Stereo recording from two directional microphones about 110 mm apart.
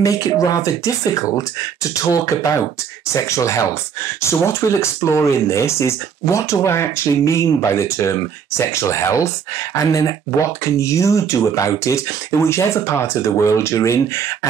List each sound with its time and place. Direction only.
0.0 s speech: 30° left (ahead or behind)